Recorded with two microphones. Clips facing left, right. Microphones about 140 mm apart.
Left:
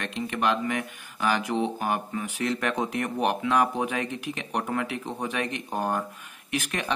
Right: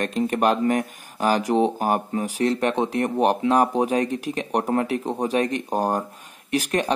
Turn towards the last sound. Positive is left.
turn(degrees=-35)  # may be behind; listen again after turning